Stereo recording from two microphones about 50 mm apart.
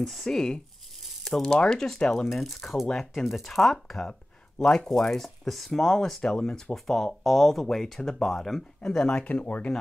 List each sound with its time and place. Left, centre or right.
0.0 s speech: centre
2.2 s speech: centre
8.8 s speech: centre; by 9.7 s left